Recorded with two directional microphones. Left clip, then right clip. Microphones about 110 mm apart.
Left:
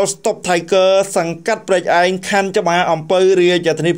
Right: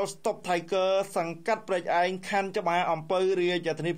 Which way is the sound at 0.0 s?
25° left (ahead or behind).